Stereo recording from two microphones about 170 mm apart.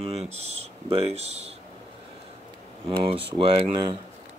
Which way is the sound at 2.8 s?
30° right (ahead or behind).